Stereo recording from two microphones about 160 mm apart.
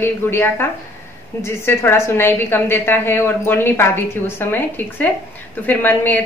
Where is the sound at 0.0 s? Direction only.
15° left (ahead or behind).